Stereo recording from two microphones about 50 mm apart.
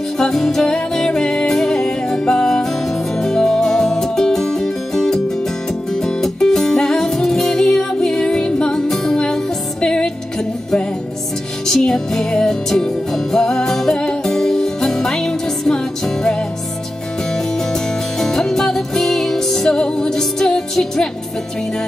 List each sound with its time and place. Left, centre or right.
0.2 s music: centre
11.6 s music: centre
18.2 s music: centre